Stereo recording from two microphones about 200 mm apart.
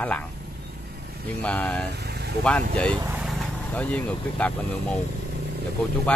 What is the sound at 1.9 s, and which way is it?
Vehicle, 55° right (ahead or behind).